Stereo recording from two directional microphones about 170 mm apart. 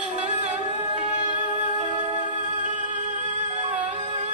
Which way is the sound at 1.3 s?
45° right (ahead or behind).